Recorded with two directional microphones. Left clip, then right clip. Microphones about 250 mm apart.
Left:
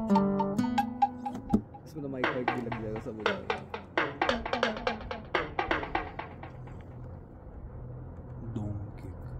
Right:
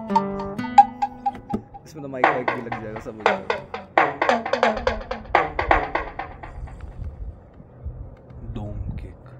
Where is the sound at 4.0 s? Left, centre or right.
Centre.